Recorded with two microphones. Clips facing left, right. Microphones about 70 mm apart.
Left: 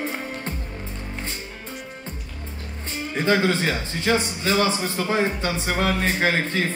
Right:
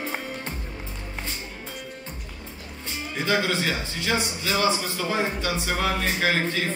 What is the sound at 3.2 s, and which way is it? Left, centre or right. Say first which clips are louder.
A man's voice: left 4 dB; left.